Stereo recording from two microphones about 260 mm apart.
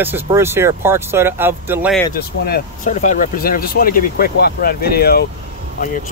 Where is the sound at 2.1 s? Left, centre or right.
Left.